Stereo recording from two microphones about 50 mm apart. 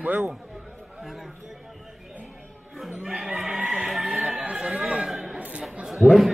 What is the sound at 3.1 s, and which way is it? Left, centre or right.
Speech, centre.